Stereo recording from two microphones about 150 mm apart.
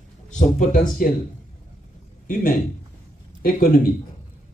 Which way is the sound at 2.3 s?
75° left (ahead or behind).